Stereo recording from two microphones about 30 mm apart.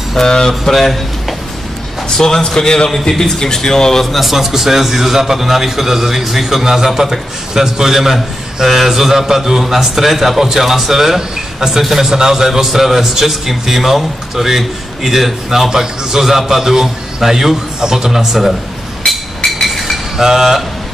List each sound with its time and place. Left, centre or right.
0.1 s a man's voice: centre
2.0 s a man's voice: centre
4.1 s a man's voice: centre
15.7 s a man's voice: right
19.0 s a sound: centre
20.2 s a man's voice: centre